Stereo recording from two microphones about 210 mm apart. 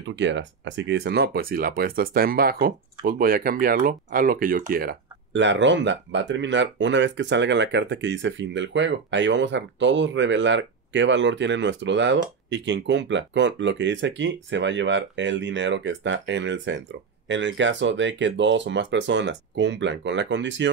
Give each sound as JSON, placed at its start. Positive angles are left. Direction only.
{"t": 0.0, "sound": "speech", "side_deg": -60}